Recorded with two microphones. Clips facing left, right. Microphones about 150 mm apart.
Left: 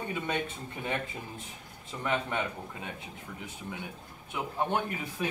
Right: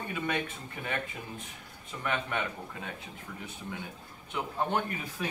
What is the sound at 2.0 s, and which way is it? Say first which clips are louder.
Speech: left 1 dB; 20° left (ahead or behind).